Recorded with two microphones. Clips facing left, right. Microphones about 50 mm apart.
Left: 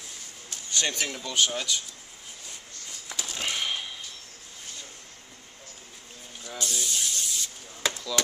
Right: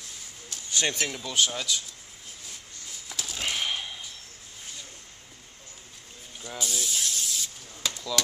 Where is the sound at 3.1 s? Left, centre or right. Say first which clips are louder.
Even; centre.